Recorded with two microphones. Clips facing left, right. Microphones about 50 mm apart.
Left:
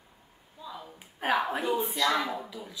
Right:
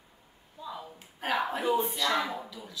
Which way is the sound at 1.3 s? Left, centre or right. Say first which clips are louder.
Left 2 dB; centre.